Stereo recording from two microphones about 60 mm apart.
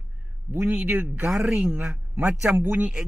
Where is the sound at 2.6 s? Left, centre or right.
Right.